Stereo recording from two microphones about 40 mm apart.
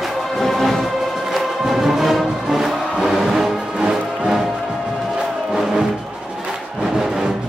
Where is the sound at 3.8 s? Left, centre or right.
Centre.